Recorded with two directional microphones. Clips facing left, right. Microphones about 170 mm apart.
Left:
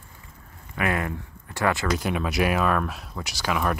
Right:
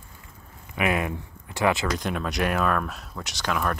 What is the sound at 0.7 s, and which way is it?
Speech, 15° right (ahead or behind).